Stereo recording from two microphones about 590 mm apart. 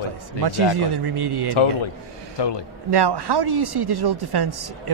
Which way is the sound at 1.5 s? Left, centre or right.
Left.